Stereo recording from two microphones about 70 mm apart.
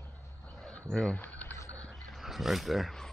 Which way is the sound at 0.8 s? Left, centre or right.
Centre.